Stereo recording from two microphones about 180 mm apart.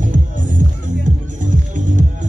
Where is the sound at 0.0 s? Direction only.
45° right (ahead or behind).